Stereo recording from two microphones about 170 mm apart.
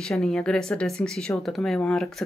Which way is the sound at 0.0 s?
5° left (ahead or behind).